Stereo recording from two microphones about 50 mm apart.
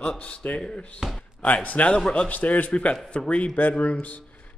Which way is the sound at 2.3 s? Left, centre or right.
Left.